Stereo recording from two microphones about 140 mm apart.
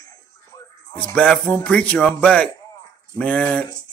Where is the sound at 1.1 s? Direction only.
5° left (ahead or behind).